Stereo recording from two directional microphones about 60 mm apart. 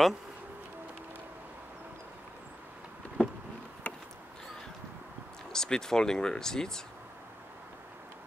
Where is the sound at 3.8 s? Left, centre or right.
Left.